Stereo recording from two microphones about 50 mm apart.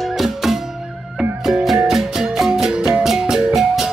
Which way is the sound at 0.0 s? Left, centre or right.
Centre.